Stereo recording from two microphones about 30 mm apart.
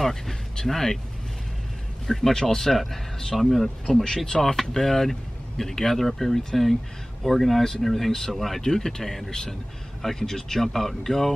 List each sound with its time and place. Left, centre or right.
0.0 s a sound: centre
0.7 s speech: centre
2.0 s speech: centre
8.6 s speech: centre